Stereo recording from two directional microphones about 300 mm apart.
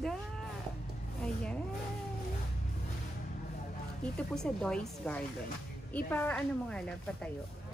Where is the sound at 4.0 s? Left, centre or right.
Centre.